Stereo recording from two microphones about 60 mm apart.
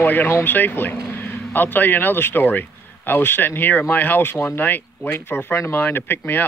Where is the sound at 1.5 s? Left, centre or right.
Left.